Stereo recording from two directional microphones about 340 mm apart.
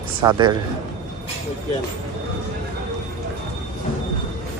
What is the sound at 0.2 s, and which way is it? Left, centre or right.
Speech, centre.